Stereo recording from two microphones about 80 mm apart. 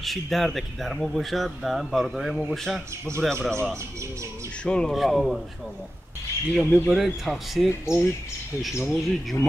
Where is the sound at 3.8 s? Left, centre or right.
Right.